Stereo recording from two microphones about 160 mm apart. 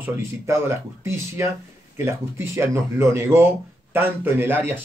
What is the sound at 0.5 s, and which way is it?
Speech, 15° right (ahead or behind).